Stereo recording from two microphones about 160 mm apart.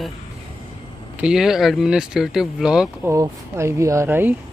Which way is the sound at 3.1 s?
15° right (ahead or behind).